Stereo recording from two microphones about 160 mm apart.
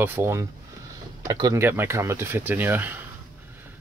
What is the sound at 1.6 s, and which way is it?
Speech, 15° right (ahead or behind).